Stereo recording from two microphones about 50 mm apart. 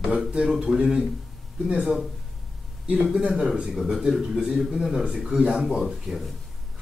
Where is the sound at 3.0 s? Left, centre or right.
Centre.